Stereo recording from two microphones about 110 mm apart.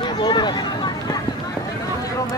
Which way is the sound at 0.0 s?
40° left (ahead or behind).